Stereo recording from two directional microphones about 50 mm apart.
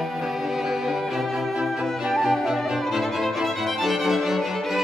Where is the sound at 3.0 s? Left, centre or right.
Centre.